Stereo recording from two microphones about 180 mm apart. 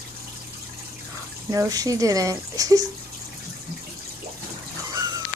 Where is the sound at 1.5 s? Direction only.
20° right (ahead or behind).